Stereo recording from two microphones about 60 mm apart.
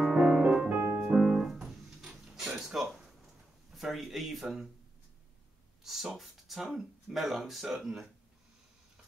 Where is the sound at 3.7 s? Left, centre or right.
Centre.